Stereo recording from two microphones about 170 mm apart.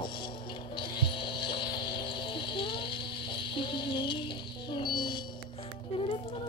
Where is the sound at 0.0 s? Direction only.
30° left (ahead or behind).